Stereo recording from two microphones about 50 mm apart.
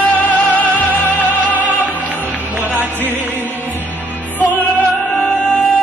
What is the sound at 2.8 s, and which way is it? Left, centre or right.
Music, right.